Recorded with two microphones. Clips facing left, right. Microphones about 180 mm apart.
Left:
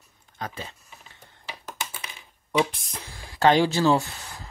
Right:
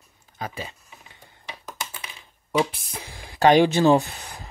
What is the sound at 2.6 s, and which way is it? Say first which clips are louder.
Speech: right 1 dB; 10° right (ahead or behind).